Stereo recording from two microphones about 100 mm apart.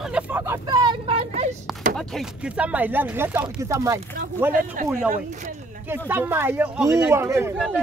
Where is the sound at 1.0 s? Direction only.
90° right.